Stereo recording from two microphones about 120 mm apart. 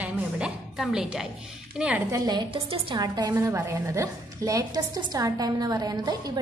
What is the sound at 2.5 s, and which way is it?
Speech, 50° right (ahead or behind).